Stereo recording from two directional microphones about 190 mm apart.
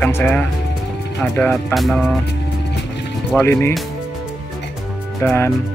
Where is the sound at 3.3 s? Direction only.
15° left (ahead or behind).